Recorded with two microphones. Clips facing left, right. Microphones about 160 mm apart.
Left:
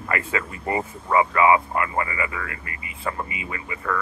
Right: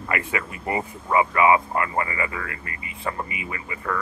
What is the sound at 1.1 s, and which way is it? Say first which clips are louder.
Speech: left 1 dB; 20° right (ahead or behind).